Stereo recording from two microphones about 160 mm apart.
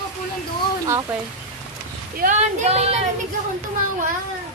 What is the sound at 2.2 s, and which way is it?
Speech, 50° right (ahead or behind).